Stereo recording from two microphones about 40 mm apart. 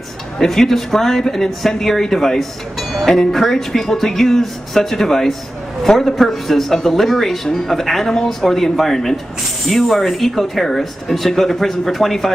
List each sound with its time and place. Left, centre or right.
0.4 s speech: centre